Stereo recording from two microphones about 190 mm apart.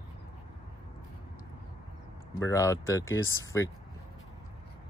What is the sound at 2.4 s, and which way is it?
Speech, 15° left (ahead or behind).